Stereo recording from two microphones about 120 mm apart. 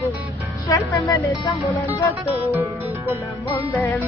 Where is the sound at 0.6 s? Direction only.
25° left (ahead or behind).